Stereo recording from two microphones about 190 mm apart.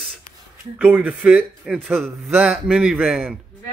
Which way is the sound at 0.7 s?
5° right (ahead or behind).